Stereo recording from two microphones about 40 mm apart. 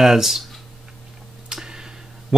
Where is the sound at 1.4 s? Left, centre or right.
Centre.